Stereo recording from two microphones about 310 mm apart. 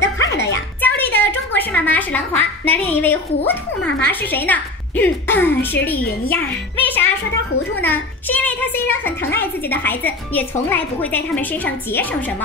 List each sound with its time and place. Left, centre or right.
0.2 s music: left
0.7 s a sound: centre
4.0 s a woman's voice: centre